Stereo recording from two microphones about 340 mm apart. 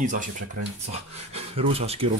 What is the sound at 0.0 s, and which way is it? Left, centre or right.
Speech, right.